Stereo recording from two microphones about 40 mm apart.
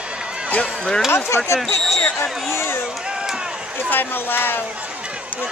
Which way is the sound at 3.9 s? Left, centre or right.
Left.